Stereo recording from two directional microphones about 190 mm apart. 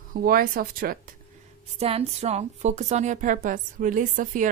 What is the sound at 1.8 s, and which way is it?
Speech, 30° right (ahead or behind).